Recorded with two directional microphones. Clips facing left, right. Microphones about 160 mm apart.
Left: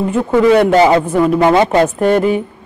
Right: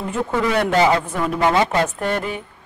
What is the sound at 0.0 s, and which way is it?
A woman's voice, 15° left (ahead or behind).